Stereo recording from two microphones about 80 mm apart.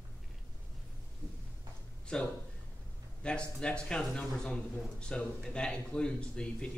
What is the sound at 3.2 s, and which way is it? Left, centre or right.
Speech, centre.